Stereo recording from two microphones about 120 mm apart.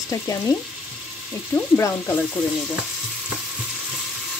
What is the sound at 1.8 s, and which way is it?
Sizzle, 15° left (ahead or behind).